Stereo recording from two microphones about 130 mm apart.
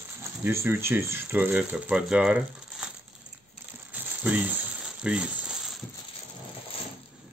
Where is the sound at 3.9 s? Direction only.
10° right (ahead or behind).